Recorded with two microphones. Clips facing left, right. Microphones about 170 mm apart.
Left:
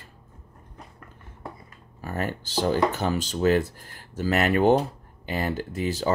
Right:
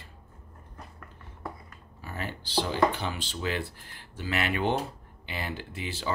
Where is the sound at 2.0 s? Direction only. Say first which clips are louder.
Left 8 dB; 45° left (ahead or behind).